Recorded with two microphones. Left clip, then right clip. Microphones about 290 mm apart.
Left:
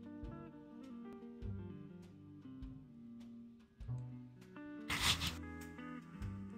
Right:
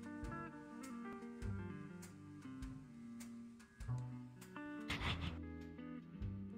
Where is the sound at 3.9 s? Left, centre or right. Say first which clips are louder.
Even; centre.